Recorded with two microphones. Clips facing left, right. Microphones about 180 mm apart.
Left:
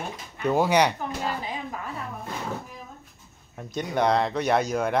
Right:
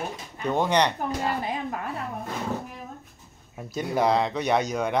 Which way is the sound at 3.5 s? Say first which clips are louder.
Right 1 dB; 5° right (ahead or behind).